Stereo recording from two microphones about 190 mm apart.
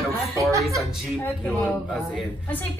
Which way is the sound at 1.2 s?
10° left (ahead or behind).